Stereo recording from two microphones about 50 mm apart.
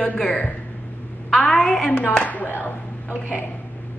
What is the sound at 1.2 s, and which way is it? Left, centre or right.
Speech, centre.